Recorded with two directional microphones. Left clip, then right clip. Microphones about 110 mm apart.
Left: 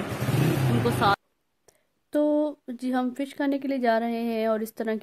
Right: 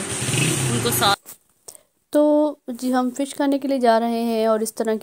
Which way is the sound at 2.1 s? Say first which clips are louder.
Right 7 dB; 45° right (ahead or behind).